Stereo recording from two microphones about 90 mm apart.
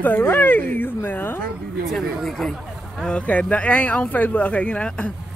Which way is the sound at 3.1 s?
15° left (ahead or behind).